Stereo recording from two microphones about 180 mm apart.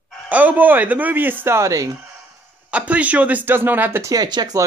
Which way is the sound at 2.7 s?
5° right (ahead or behind).